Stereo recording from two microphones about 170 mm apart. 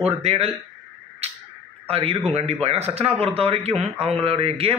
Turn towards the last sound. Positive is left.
turn(degrees=-35)  # may be behind; listen again after turning